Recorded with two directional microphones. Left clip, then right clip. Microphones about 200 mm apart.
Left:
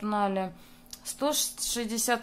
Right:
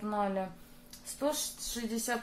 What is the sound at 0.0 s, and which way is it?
A woman's voice, 35° left (ahead or behind).